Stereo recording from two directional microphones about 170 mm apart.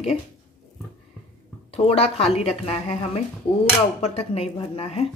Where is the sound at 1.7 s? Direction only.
35° left (ahead or behind).